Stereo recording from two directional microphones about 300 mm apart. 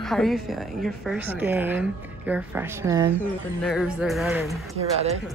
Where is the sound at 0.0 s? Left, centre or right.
Centre.